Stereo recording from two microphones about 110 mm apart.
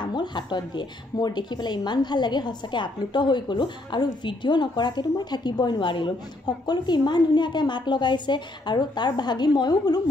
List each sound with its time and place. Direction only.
0.0 s speech: 45° left (ahead or behind)